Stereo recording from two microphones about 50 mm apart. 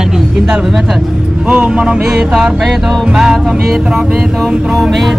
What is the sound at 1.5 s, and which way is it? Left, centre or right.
A man's voice, centre.